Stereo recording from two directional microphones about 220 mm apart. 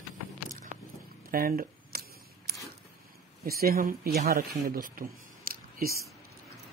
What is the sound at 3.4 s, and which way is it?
Speech, 45° right (ahead or behind).